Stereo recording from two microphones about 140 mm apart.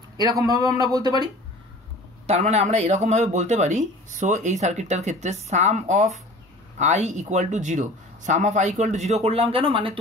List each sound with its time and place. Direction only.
0.2 s speech: 25° right (ahead or behind)
2.2 s speech: 50° right (ahead or behind)